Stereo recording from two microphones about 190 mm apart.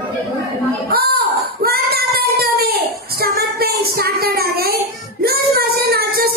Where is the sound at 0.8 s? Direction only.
55° right (ahead or behind).